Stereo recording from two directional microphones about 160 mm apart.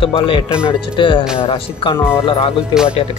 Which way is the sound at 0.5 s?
5° right (ahead or behind).